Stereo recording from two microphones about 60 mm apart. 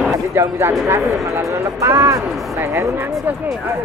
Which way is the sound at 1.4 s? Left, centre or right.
Right.